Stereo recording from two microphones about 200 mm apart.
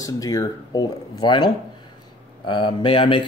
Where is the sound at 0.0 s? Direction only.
15° left (ahead or behind).